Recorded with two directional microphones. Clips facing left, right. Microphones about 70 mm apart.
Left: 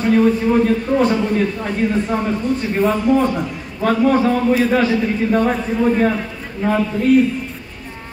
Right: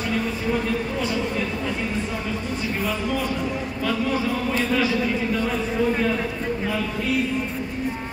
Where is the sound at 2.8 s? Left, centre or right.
Left.